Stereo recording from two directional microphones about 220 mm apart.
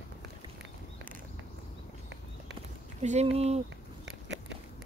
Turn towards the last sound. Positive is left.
turn(degrees=-50)  # may be behind; listen again after turning